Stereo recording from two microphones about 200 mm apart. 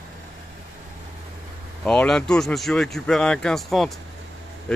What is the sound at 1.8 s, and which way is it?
Speech, 5° left (ahead or behind).